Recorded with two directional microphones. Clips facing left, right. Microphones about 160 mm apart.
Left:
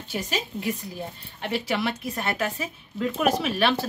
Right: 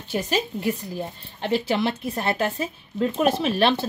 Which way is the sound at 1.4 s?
30° right (ahead or behind).